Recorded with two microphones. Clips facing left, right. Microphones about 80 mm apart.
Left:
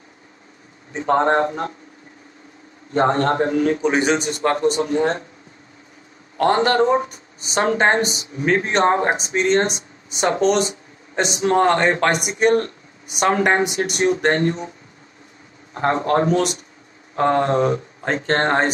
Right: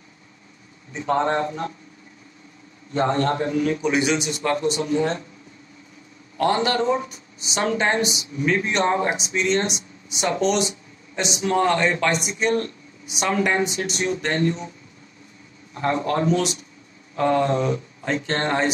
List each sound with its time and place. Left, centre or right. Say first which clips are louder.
0.9 s a man's voice: left 4 dB; left
2.9 s a man's voice: left 4 dB; left
6.3 s speech: left 4 dB; left
15.7 s a man's voice: left 4 dB; left